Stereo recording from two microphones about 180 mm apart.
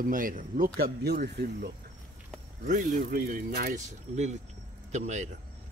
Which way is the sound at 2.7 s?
45° right (ahead or behind).